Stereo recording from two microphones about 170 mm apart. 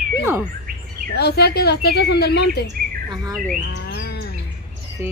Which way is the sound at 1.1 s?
75° left (ahead or behind).